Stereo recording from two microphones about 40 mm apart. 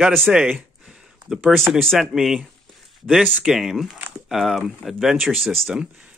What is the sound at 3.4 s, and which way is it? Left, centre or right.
Speech, centre.